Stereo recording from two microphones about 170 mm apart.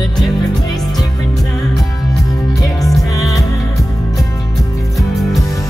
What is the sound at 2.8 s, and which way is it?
Music, 20° left (ahead or behind).